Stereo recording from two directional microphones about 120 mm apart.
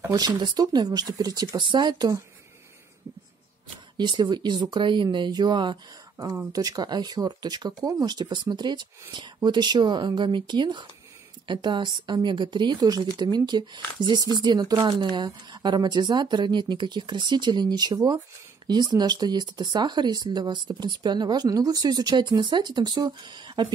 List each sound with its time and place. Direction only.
0.1 s speech: 35° right (ahead or behind)
3.9 s speech: 40° right (ahead or behind)